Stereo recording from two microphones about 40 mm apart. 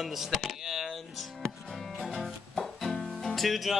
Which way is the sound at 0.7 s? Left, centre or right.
Centre.